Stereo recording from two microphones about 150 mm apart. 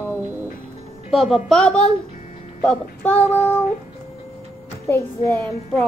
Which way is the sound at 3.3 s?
15° right (ahead or behind).